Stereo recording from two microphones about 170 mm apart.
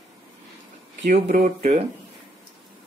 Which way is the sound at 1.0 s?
45° right (ahead or behind).